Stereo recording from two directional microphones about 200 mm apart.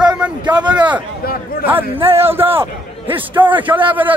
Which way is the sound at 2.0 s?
30° right (ahead or behind).